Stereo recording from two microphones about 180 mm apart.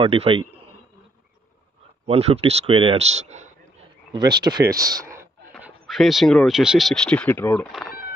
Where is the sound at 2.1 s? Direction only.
35° right (ahead or behind).